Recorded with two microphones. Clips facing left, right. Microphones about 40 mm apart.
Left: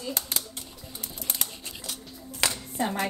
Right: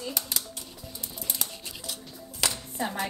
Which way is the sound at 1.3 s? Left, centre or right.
Left.